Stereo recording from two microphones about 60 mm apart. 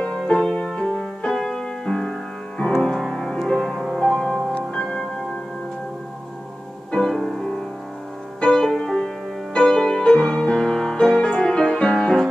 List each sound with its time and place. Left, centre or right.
0.0 s music: centre
4.7 s singing bowl: centre
6.9 s music: centre